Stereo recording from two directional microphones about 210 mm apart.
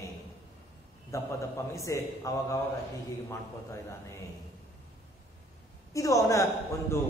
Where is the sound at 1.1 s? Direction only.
15° left (ahead or behind).